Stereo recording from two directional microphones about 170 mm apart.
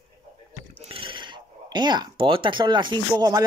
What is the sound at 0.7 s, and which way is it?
Speech, 30° right (ahead or behind).